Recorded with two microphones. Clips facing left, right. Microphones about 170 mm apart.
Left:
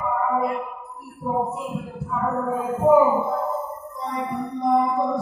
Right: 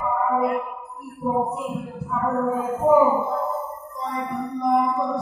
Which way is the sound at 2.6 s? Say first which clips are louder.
Left 2 dB; centre (ahead or behind).